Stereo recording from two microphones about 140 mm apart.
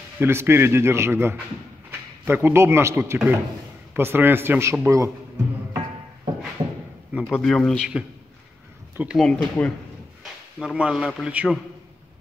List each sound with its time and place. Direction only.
0.2 s a man's voice: 15° right (ahead or behind)
7.2 s a man's voice: 5° left (ahead or behind)
8.9 s speech: 10° right (ahead or behind)
9.2 s a man's voice: 5° left (ahead or behind)
10.6 s a man's voice: 5° right (ahead or behind)